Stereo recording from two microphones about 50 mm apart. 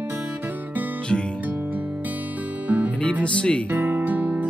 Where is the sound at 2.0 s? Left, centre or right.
Right.